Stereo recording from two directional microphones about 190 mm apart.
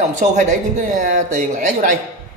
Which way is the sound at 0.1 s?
40° right (ahead or behind).